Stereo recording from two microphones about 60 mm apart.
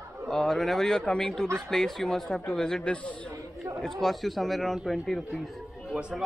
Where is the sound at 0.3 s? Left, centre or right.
Centre.